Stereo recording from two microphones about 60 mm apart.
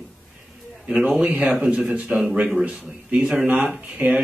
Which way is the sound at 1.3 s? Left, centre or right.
Right.